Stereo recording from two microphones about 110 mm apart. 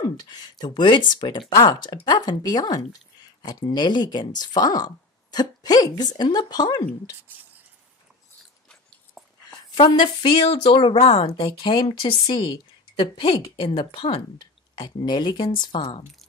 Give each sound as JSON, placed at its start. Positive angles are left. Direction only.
{"t": 0.2, "sound": "speech", "side_deg": 40}
{"t": 9.2, "sound": "a sound", "side_deg": 0}
{"t": 9.8, "sound": "speech", "side_deg": 45}
{"t": 11.3, "sound": "speech", "side_deg": 45}